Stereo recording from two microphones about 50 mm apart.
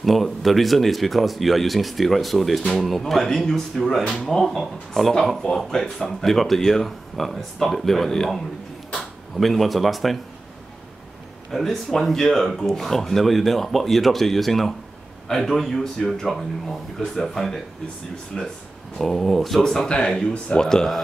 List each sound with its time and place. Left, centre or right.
0.0 s speech: centre
11.5 s speech: centre
19.9 s speech: centre